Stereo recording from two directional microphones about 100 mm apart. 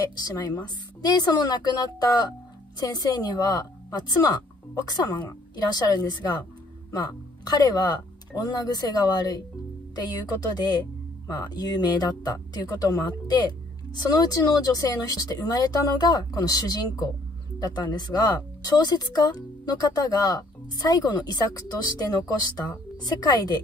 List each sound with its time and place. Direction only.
0.2 s speech: 40° left (ahead or behind)
4.8 s speech: 45° left (ahead or behind)